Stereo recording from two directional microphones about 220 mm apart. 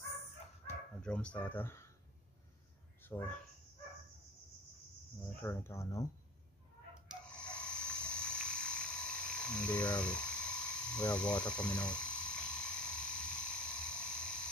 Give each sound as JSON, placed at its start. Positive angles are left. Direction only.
{"t": 1.0, "sound": "speech", "side_deg": 5}
{"t": 3.0, "sound": "speech", "side_deg": 10}
{"t": 5.4, "sound": "speech", "side_deg": 10}
{"t": 7.1, "sound": "a sound", "side_deg": 5}